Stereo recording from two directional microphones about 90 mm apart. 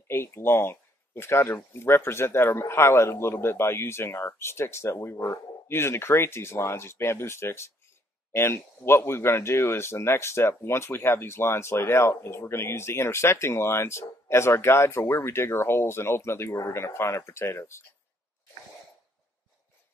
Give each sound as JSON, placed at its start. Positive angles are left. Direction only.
{"t": 0.1, "sound": "speech", "side_deg": 30}